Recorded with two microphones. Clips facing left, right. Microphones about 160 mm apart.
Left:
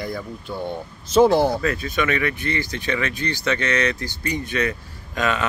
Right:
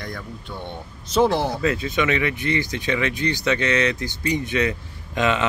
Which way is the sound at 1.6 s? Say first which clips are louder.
Right 1 dB; 20° right (ahead or behind).